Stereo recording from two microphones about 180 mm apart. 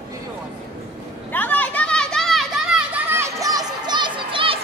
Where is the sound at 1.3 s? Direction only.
10° left (ahead or behind).